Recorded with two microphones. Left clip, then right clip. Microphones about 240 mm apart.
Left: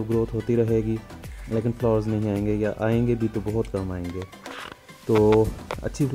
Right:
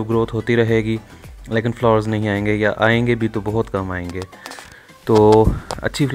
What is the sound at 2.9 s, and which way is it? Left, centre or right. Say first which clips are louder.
Speech: right 6 dB; right.